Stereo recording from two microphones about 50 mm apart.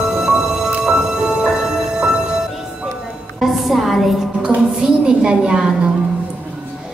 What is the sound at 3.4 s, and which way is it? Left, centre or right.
Music, centre.